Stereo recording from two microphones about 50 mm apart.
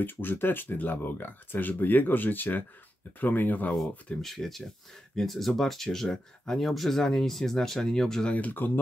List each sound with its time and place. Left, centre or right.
0.0 s speech: left
4.2 s speech: centre
6.6 s speech: centre
8.3 s speech: left